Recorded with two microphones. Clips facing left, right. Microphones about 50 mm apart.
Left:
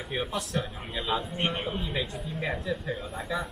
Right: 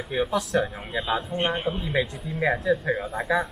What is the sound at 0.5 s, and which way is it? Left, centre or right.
Speech, right.